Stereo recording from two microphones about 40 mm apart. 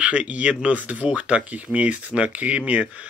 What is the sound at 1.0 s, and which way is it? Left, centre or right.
Speech, right.